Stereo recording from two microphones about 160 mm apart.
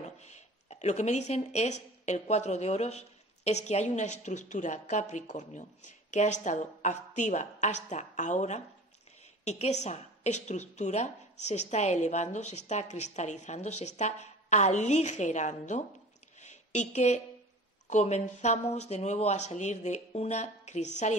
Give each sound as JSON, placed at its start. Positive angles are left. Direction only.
{"t": 0.0, "sound": "a woman's voice", "side_deg": 45}
{"t": 16.3, "sound": "a sound", "side_deg": 45}
{"t": 17.8, "sound": "a woman's voice", "side_deg": 45}